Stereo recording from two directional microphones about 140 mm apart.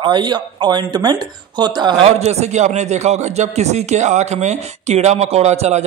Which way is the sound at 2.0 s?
50° right (ahead or behind).